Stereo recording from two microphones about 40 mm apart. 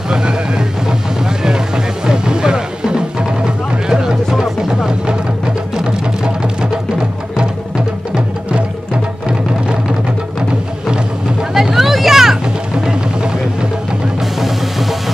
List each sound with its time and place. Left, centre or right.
0.1 s vehicle: centre
2.0 s music: centre
8.1 s music: right
11.5 s a sound: centre
12.7 s music: right
14.4 s music: centre